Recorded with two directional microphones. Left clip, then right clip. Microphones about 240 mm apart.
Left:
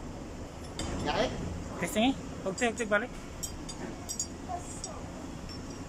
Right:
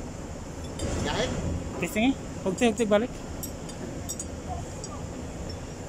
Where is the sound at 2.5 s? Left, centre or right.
Centre.